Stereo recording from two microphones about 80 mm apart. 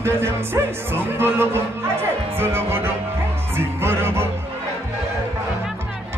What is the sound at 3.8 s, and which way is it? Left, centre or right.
Music, right.